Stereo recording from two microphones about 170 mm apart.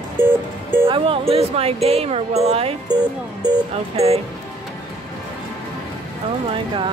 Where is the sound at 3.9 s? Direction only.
35° right (ahead or behind).